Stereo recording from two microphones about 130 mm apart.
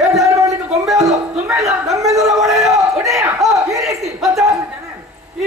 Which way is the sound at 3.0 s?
25° right (ahead or behind).